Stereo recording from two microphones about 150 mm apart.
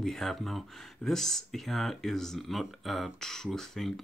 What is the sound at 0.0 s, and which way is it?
Speech, centre (ahead or behind).